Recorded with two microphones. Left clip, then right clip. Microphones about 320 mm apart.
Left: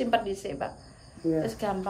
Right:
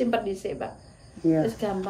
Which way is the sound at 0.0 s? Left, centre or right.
Centre.